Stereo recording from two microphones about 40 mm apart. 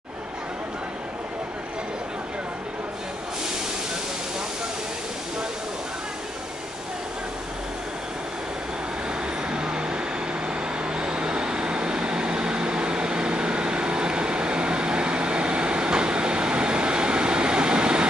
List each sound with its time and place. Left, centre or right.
9.5 s vehicle: right